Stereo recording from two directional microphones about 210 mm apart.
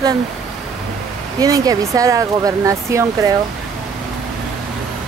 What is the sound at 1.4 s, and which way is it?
Speech, 15° right (ahead or behind).